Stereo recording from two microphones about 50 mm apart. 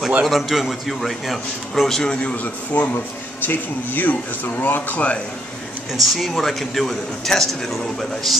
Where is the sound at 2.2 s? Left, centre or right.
Left.